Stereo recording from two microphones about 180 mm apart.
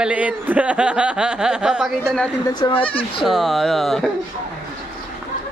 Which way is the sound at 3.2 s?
Centre (ahead or behind).